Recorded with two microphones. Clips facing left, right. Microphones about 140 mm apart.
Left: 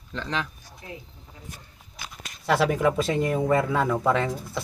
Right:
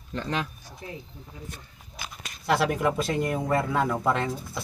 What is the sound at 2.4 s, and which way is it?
Speech, centre (ahead or behind).